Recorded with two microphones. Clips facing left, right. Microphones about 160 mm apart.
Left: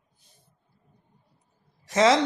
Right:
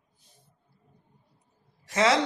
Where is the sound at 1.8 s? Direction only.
20° left (ahead or behind).